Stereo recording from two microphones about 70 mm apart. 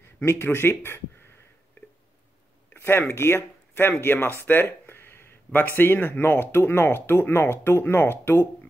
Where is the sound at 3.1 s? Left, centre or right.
Left.